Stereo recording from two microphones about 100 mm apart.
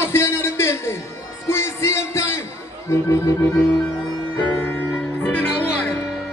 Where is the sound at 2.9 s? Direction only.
30° left (ahead or behind).